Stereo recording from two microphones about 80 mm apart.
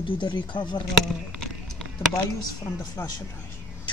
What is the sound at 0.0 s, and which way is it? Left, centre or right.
Speech, left.